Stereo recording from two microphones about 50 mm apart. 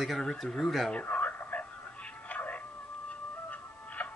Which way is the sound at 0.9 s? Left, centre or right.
Left.